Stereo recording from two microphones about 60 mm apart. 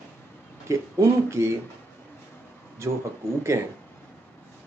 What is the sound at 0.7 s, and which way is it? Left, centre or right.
Speech, right.